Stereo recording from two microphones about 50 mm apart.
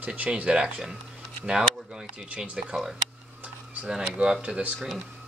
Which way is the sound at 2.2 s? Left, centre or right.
Right.